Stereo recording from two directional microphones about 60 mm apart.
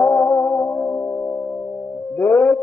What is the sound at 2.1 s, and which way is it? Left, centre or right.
Music, left.